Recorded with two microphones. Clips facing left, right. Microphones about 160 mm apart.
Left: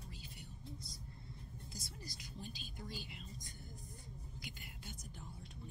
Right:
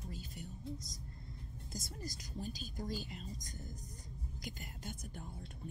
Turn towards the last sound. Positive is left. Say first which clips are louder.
# right 6 dB
turn(degrees=-45)  # may be behind; listen again after turning